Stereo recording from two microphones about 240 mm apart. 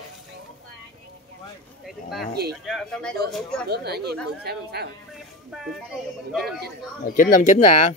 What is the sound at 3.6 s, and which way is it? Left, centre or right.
Speech, right.